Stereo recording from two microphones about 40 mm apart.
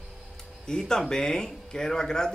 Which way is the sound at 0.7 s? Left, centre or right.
Centre.